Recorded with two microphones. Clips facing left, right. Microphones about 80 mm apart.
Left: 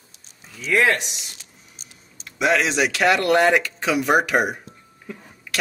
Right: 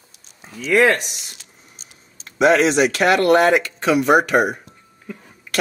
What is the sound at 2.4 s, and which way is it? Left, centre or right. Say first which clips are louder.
Speech: right 5 dB; right.